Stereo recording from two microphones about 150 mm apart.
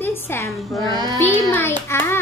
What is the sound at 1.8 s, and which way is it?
Speech, 15° left (ahead or behind).